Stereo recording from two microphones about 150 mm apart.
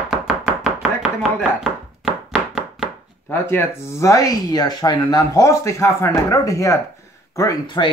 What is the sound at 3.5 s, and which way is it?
Speech, 20° left (ahead or behind).